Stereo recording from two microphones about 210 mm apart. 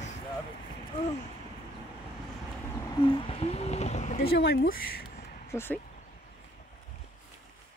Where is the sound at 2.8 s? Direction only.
20° left (ahead or behind).